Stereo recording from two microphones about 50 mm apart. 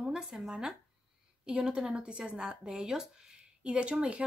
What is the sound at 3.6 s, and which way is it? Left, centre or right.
Speech, right.